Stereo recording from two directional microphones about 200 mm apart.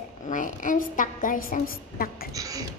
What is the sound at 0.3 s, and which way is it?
A woman's voice, 40° left (ahead or behind).